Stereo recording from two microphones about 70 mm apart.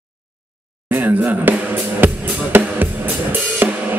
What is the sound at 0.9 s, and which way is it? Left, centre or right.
Speech, right.